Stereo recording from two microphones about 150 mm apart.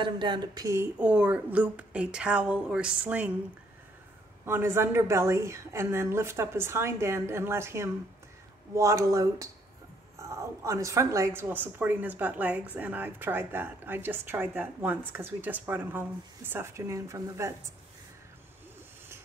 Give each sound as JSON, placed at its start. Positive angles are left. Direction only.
{"t": 0.0, "sound": "speech", "side_deg": -30}
{"t": 0.9, "sound": "speech", "side_deg": -10}
{"t": 4.5, "sound": "speech", "side_deg": -15}